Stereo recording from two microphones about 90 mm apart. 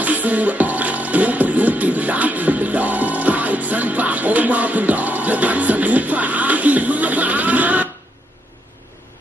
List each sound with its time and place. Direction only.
0.0 s music: 20° right (ahead or behind)